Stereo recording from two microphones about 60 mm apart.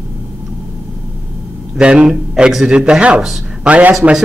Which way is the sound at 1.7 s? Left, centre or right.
Centre.